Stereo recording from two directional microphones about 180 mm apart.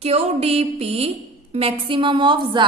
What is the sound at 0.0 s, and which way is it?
A woman's voice, 35° right (ahead or behind).